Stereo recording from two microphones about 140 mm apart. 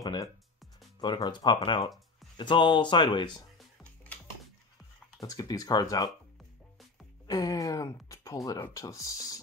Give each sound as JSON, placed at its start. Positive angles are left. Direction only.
{"t": 0.0, "sound": "music", "side_deg": 25}
{"t": 1.0, "sound": "speech", "side_deg": 30}
{"t": 5.2, "sound": "speech", "side_deg": 25}
{"t": 7.2, "sound": "speech", "side_deg": 25}